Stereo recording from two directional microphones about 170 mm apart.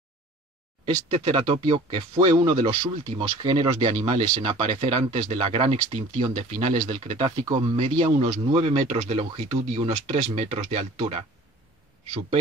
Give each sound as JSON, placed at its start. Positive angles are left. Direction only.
{"t": 0.8, "sound": "speech", "side_deg": -30}
{"t": 6.3, "sound": "speech", "side_deg": -45}
{"t": 6.9, "sound": "speech", "side_deg": -35}